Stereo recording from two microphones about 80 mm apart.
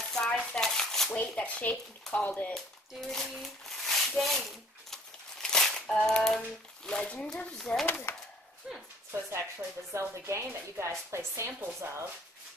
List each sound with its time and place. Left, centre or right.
0.1 s dishes: centre
0.6 s speech: centre
1.1 s speech: centre
2.5 s a sound: centre
6.0 s speech: centre
8.1 s speech: left
8.6 s speech: centre
9.1 s speech: right